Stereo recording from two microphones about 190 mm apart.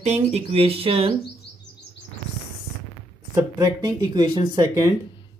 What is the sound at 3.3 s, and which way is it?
Speech, 20° right (ahead or behind).